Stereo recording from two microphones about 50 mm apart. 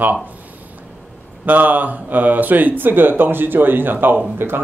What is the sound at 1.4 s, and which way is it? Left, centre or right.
Speech, right.